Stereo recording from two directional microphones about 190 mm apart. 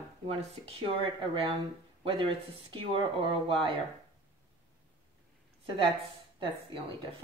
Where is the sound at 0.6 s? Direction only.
30° right (ahead or behind).